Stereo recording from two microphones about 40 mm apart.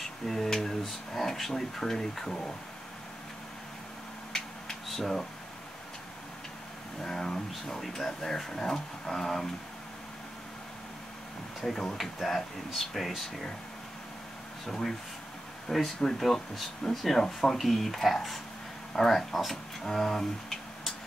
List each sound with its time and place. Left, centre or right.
0.0 s speech: centre
4.8 s speech: centre
7.0 s speech: centre
11.6 s speech: centre
14.7 s speech: centre